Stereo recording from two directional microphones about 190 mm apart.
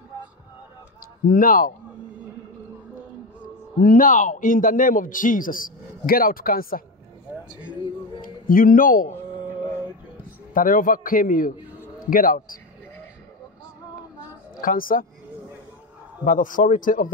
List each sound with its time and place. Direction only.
1.2 s a man's voice: 50° left (ahead or behind)
3.8 s a man's voice: 45° left (ahead or behind)
8.5 s a man's voice: 50° left (ahead or behind)
10.5 s a man's voice: 45° left (ahead or behind)
14.6 s a man's voice: 45° left (ahead or behind)
16.3 s a man's voice: 45° left (ahead or behind)